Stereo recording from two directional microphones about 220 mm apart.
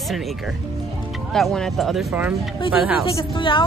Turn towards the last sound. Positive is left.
turn(degrees=20)  # may be behind; listen again after turning